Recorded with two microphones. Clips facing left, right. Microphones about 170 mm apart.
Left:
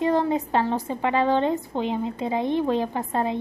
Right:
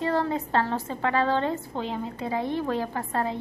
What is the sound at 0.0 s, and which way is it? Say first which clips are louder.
A woman's voice: left 4 dB; 15° left (ahead or behind).